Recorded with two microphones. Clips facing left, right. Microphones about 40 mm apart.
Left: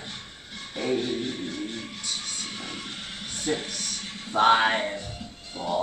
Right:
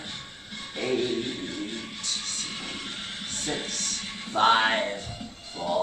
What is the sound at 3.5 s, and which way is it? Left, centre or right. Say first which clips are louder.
A man's voice: left 1 dB; centre.